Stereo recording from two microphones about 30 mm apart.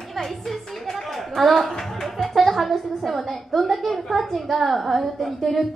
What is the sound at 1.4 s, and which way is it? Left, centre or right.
A woman's voice, centre.